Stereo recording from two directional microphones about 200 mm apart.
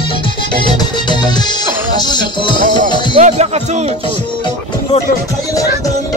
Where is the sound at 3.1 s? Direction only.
35° right (ahead or behind).